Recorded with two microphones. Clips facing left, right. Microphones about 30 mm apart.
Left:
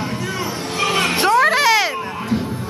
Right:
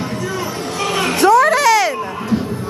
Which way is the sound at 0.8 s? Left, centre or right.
Centre.